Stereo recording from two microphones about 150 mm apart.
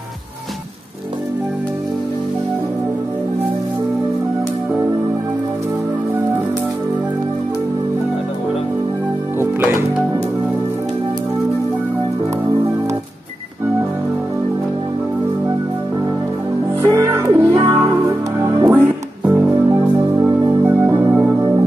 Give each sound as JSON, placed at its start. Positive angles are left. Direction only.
{"t": 9.4, "sound": "music", "side_deg": -15}
{"t": 16.9, "sound": "music", "side_deg": -20}
{"t": 19.2, "sound": "music", "side_deg": -10}